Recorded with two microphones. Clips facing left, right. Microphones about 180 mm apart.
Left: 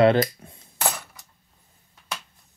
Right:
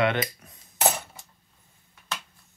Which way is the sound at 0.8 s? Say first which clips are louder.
Right 3 dB; 25° right (ahead or behind).